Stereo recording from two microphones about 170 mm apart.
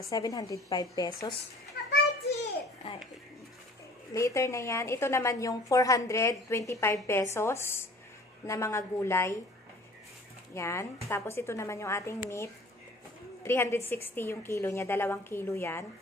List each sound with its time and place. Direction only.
0.0 s a woman's voice: 20° left (ahead or behind)
1.8 s a sound: 80° left
4.1 s a woman's voice: 20° left (ahead or behind)
10.5 s a woman's voice: 15° left (ahead or behind)
13.4 s a woman's voice: 15° left (ahead or behind)